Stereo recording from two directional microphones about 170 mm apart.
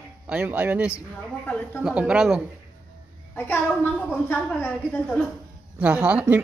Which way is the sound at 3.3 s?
10° left (ahead or behind).